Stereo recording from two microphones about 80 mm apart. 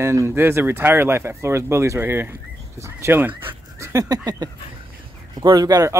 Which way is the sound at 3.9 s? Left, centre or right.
Right.